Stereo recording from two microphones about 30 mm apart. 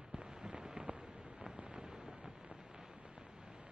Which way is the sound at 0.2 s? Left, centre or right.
Right.